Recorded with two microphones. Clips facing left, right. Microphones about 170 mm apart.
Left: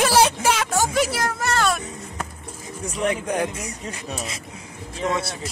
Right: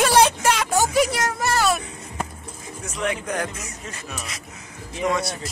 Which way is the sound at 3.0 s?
15° left (ahead or behind).